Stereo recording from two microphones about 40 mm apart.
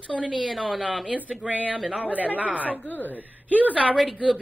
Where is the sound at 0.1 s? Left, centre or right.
Centre.